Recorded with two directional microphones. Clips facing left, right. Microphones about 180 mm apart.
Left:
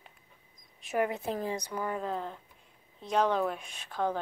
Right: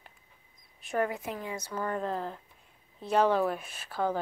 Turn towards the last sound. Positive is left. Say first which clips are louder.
# right 1 dB
turn(degrees=-5)  # may be behind; listen again after turning